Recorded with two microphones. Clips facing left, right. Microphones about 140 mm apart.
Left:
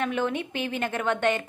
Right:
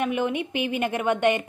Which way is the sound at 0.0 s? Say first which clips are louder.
Right 2 dB; 15° right (ahead or behind).